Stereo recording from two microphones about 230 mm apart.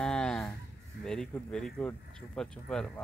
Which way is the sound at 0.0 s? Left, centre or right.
Centre.